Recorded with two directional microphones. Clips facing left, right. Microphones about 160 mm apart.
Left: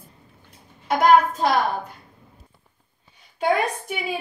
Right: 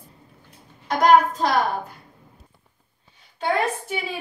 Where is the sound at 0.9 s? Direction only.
5° left (ahead or behind).